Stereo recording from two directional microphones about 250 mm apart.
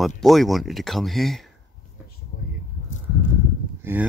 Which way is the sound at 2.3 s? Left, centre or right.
Left.